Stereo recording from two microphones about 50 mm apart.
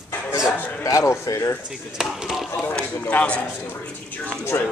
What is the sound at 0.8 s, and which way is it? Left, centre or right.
Speech, left.